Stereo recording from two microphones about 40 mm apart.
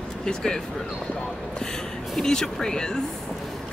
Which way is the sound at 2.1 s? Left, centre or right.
Centre.